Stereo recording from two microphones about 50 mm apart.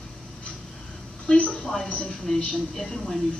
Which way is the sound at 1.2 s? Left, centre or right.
Left.